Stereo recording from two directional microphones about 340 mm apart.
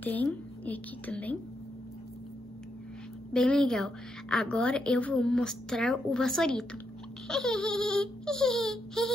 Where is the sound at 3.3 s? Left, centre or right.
Centre.